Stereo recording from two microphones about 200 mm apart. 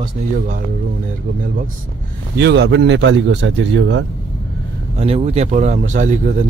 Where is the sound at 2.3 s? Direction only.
55° right (ahead or behind).